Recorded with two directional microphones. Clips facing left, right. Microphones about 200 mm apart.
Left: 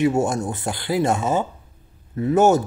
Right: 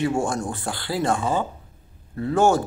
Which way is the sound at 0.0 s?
20° left (ahead or behind).